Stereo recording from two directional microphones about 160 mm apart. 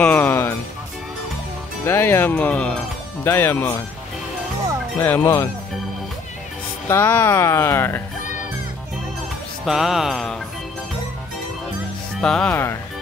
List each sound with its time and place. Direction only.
0.0 s music: 10° left (ahead or behind)
1.9 s speech: 15° left (ahead or behind)
4.9 s speech: 10° left (ahead or behind)
6.9 s speech: 15° left (ahead or behind)
9.7 s music: centre (ahead or behind)
12.2 s music: 5° left (ahead or behind)